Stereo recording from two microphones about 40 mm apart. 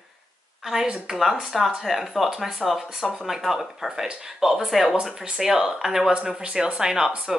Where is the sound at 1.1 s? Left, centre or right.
Centre.